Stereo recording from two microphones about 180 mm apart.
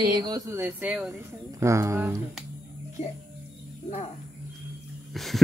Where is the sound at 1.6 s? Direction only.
15° right (ahead or behind).